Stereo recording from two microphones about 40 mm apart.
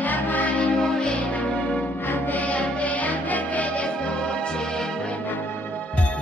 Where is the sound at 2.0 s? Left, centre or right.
Left.